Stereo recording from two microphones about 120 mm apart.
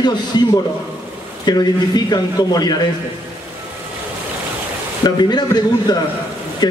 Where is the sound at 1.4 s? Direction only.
35° left (ahead or behind).